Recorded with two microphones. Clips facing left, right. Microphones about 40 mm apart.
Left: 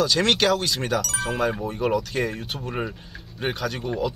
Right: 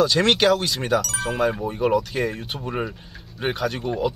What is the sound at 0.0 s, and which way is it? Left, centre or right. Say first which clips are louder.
Speech: right 2 dB; centre.